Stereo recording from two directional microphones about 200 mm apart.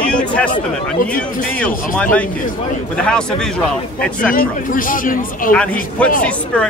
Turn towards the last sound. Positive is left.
turn(degrees=5)  # may be behind; listen again after turning